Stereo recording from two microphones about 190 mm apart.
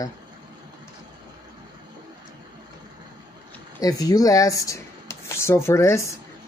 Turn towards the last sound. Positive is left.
turn(degrees=15)  # may be behind; listen again after turning